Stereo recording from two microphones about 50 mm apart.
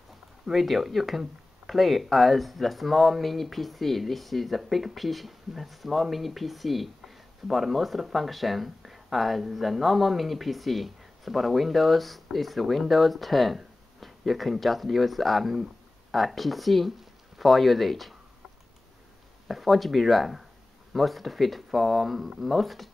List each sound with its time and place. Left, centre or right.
0.5 s speech: centre
19.4 s speech: centre